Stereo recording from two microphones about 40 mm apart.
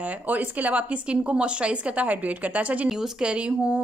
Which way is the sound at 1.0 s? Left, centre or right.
Right.